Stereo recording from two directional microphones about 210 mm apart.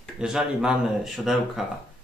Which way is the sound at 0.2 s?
5° right (ahead or behind).